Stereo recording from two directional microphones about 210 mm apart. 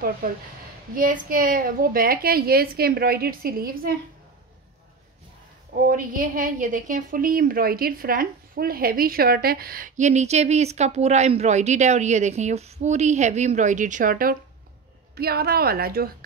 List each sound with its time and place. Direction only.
0.2 s a woman's voice: 45° right (ahead or behind)
5.9 s a woman's voice: 40° right (ahead or behind)